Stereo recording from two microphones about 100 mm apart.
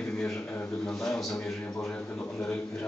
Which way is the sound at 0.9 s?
5° left (ahead or behind).